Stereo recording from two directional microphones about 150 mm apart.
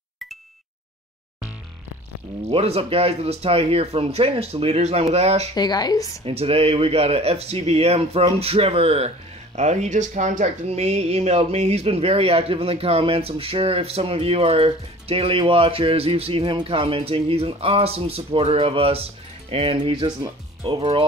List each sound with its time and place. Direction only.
2.4 s speech: 40° right (ahead or behind)
5.5 s speech: 25° left (ahead or behind)
6.2 s speech: 40° right (ahead or behind)